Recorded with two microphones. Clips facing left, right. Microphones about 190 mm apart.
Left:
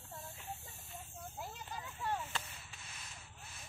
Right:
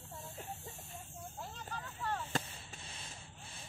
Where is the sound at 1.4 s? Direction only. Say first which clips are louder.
Right 1 dB; 10° left (ahead or behind).